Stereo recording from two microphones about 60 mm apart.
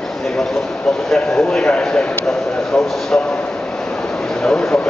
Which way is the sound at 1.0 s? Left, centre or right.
Centre.